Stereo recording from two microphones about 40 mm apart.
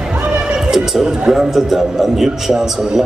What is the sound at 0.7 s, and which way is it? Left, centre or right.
A man's voice, centre.